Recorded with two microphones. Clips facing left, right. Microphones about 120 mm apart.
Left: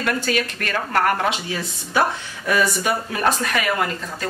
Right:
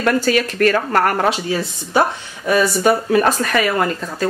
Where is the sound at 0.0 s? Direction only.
40° right (ahead or behind).